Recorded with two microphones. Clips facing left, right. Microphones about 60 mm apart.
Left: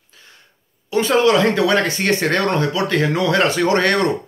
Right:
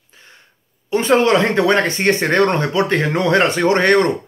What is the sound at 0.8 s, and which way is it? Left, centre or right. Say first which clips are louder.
Speech: right 1 dB; right.